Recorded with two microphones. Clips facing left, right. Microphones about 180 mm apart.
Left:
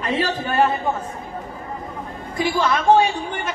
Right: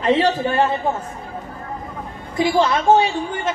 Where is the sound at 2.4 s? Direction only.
25° right (ahead or behind).